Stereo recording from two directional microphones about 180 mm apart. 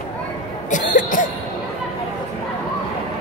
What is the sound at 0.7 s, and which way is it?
Cough, 45° left (ahead or behind).